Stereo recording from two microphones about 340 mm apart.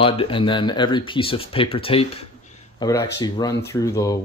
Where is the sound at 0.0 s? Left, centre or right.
Centre.